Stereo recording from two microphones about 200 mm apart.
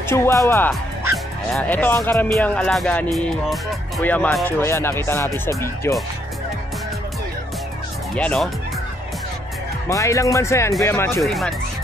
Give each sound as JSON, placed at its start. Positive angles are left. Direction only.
{"t": 0.1, "sound": "speech", "side_deg": 15}
{"t": 8.2, "sound": "speech", "side_deg": 5}
{"t": 9.8, "sound": "speech", "side_deg": 15}
{"t": 11.2, "sound": "speech", "side_deg": 0}